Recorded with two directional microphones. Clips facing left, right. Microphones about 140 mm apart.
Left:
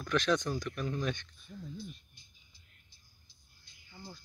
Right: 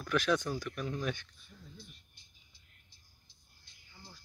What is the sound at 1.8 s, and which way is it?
Music, 70° right (ahead or behind).